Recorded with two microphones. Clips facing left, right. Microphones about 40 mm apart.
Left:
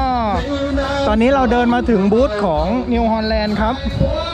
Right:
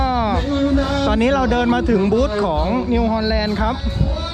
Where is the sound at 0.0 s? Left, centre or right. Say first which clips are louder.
Left 1 dB; right.